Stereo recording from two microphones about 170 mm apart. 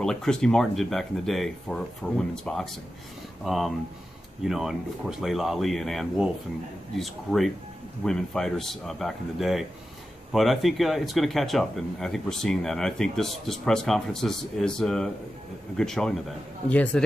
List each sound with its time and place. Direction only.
0.0 s speech: 5° left (ahead or behind)